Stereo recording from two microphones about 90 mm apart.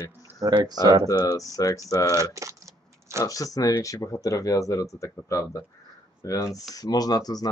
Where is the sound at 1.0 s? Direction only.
40° left (ahead or behind).